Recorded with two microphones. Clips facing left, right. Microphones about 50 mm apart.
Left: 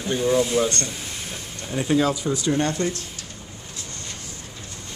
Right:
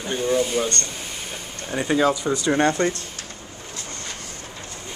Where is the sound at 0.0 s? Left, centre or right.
Centre.